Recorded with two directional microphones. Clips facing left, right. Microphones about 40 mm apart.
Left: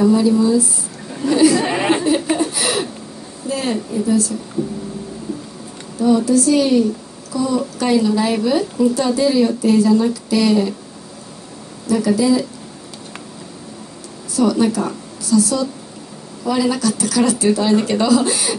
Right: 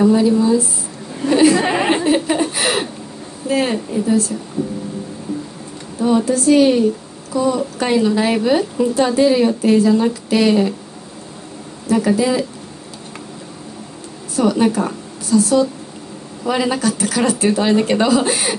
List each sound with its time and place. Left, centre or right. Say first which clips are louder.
0.1 s speech: even; right
6.0 s speech: even; right
11.9 s speech: even; right
14.3 s speech: right 1 dB; right